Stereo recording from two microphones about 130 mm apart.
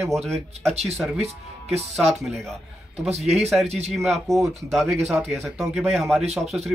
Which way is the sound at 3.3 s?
Centre (ahead or behind).